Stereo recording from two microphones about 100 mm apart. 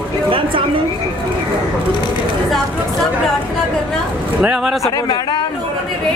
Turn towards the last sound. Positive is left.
turn(degrees=45)  # may be behind; listen again after turning